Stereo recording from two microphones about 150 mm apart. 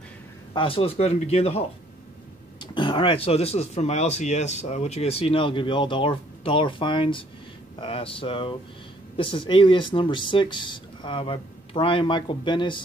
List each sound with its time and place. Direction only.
0.5 s speech: 35° left (ahead or behind)